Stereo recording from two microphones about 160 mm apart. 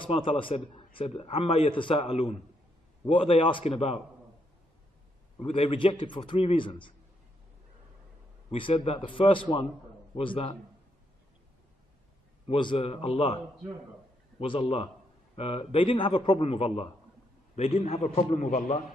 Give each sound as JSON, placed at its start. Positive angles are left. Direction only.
{"t": 0.0, "sound": "speech", "side_deg": 30}
{"t": 5.4, "sound": "speech", "side_deg": 35}
{"t": 8.5, "sound": "speech", "side_deg": 35}
{"t": 12.4, "sound": "speech", "side_deg": 35}
{"t": 14.4, "sound": "speech", "side_deg": 35}